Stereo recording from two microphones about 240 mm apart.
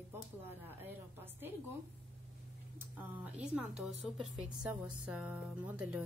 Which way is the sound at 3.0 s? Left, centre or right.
Centre.